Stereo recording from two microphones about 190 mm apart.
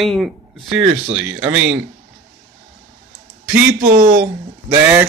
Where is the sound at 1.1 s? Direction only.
10° right (ahead or behind).